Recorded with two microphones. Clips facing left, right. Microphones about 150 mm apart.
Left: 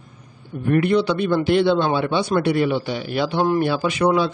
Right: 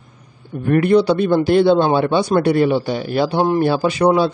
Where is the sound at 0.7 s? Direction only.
45° right (ahead or behind).